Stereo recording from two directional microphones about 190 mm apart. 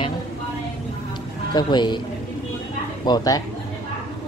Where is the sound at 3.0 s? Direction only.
20° left (ahead or behind).